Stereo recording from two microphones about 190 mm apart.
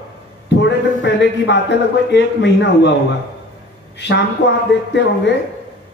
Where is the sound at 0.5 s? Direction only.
65° left (ahead or behind).